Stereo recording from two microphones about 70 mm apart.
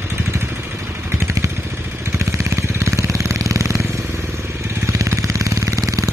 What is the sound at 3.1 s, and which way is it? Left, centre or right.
Jackhammer, right.